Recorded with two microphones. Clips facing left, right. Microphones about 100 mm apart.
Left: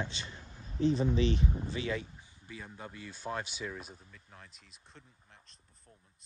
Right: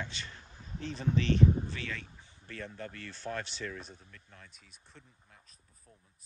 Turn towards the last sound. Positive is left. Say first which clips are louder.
# left 1 dB
turn(degrees=0)  # may be behind; listen again after turning